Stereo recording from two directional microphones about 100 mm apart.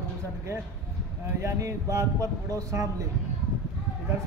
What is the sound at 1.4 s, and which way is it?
A man's voice, 30° right (ahead or behind).